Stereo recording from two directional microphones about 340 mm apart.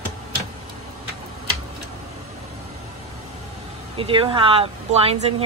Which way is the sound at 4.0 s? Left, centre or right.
Centre.